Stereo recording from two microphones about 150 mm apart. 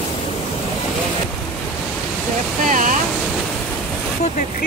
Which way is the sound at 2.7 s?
55° right (ahead or behind).